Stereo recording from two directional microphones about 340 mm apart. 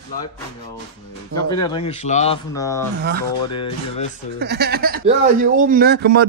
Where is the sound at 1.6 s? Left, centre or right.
Centre.